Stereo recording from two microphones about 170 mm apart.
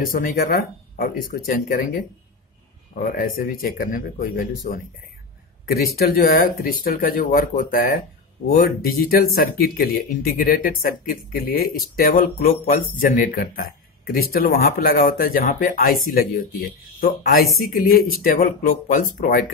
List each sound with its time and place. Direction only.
0.1 s speech: 55° left (ahead or behind)